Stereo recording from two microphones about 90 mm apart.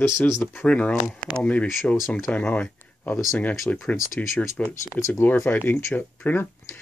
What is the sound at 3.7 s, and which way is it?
Speech, 10° left (ahead or behind).